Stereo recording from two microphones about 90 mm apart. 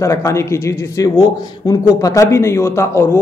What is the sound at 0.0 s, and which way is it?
A man's voice, 35° left (ahead or behind).